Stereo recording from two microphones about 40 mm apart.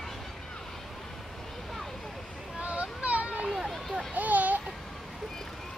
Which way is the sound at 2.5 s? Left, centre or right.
Right.